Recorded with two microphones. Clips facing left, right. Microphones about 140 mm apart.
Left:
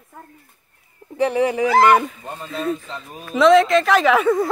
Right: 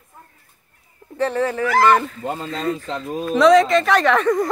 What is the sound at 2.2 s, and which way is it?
A man's voice, 90° right.